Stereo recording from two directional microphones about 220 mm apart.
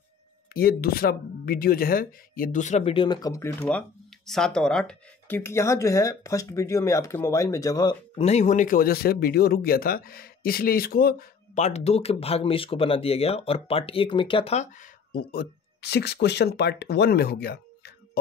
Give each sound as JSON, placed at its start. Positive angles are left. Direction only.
{"t": 0.5, "sound": "speech", "side_deg": 45}
{"t": 15.1, "sound": "speech", "side_deg": 45}